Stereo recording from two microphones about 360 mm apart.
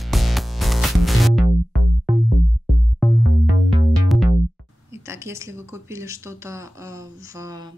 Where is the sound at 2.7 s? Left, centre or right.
Centre.